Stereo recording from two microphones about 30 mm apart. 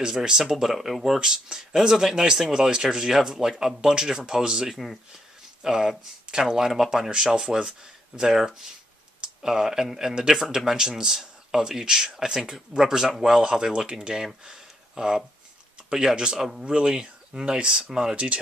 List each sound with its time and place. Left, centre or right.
0.1 s speech: right
0.7 s speech: centre
1.2 s speech: right
7.1 s speech: right
14.4 s a sound: right
15.9 s speech: right
16.6 s speech: right
18.1 s speech: right